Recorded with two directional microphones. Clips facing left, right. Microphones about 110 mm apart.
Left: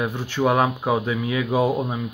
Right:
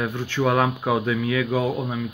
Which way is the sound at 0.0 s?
10° left (ahead or behind).